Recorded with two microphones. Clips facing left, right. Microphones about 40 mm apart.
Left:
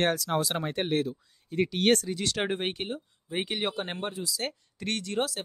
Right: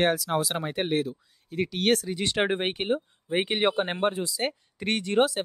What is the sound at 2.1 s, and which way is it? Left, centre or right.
Speech, right.